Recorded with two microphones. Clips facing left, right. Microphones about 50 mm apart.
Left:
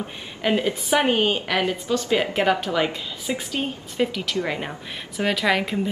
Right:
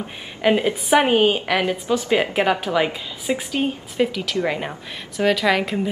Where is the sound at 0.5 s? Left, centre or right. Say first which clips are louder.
Right 4 dB; right.